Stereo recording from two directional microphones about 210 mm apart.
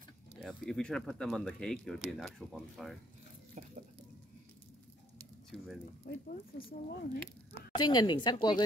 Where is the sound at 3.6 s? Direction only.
35° right (ahead or behind).